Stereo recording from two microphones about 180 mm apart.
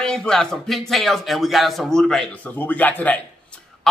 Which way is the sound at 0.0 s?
5° left (ahead or behind).